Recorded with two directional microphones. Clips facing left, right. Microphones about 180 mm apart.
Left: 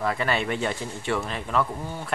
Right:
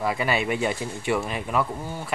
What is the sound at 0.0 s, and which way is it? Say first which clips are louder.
Speech: right 1 dB; 10° right (ahead or behind).